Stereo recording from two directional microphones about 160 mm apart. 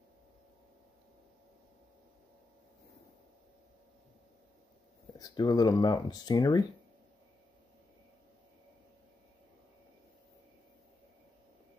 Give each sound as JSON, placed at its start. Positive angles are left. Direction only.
{"t": 5.2, "sound": "speech", "side_deg": 25}